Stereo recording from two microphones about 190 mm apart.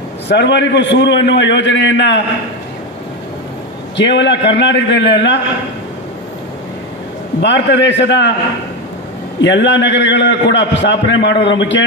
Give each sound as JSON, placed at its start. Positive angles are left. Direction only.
{"t": 0.3, "sound": "a man's voice", "side_deg": 65}
{"t": 3.9, "sound": "a man's voice", "side_deg": 70}
{"t": 7.4, "sound": "a man's voice", "side_deg": 70}
{"t": 9.4, "sound": "a man's voice", "side_deg": 70}